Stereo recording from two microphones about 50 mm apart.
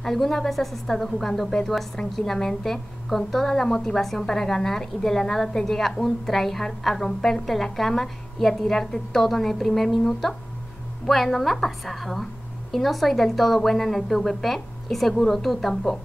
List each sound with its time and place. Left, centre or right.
0.0 s a woman's voice: centre